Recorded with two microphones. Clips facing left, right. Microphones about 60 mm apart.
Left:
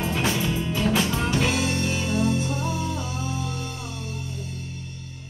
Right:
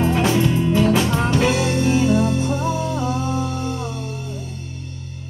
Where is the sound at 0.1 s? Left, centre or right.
Centre.